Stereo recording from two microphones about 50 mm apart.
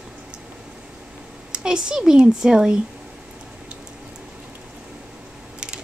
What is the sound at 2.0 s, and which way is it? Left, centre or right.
Speech, centre.